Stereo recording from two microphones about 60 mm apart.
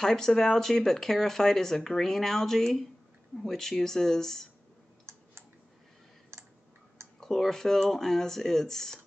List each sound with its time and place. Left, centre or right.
0.0 s speech: centre
6.3 s clicking: right
7.2 s speech: centre